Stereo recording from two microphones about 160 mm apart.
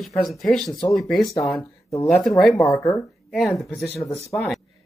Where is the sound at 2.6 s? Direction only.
20° left (ahead or behind).